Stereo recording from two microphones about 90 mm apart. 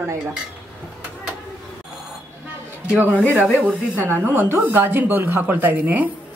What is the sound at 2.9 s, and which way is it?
A woman's voice, 20° right (ahead or behind).